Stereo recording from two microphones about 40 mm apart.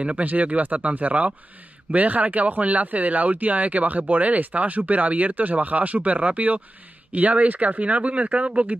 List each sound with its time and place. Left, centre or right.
0.0 s speech: right